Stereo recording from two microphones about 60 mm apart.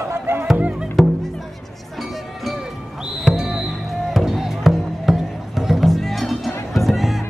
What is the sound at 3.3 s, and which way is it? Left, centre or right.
Music, centre.